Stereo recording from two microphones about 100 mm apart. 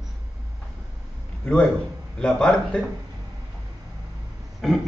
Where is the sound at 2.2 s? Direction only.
10° left (ahead or behind).